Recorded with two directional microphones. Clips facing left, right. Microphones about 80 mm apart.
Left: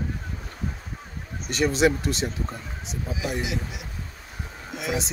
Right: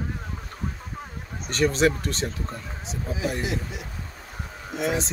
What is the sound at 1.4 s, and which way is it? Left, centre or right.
Speech, centre.